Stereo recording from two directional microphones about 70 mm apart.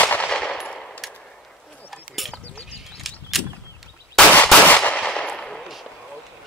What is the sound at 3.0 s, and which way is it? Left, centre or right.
Door, centre.